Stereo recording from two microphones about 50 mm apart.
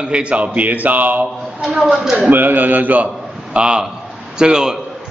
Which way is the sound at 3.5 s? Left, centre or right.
Centre.